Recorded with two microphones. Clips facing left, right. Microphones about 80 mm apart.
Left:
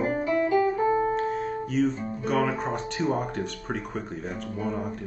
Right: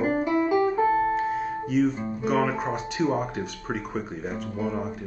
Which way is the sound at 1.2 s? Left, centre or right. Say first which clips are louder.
Right 1 dB; centre.